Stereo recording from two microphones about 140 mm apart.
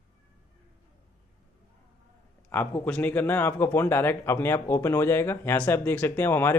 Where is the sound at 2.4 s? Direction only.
15° left (ahead or behind).